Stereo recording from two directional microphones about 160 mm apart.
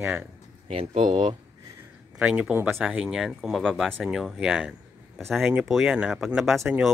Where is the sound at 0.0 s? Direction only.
10° right (ahead or behind).